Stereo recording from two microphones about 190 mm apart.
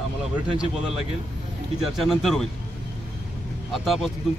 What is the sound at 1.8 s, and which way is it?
Speech, centre (ahead or behind).